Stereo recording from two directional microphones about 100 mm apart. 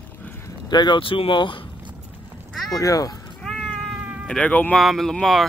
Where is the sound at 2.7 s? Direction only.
35° left (ahead or behind).